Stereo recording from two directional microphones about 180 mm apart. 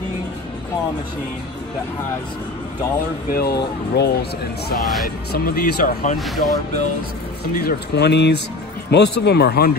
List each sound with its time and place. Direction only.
3.3 s speech: 60° left (ahead or behind)
6.1 s speech: centre (ahead or behind)
7.5 s speech: 60° left (ahead or behind)